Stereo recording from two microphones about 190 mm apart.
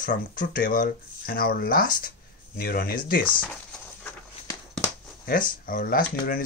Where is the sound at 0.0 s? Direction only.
45° left (ahead or behind).